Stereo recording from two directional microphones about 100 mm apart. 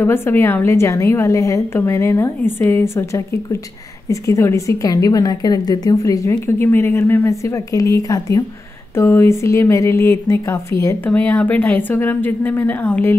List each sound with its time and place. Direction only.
0.0 s a woman's voice: 25° left (ahead or behind)
11.1 s speech: 15° left (ahead or behind)